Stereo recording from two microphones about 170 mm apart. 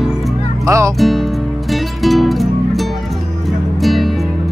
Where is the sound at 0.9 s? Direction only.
Centre (ahead or behind).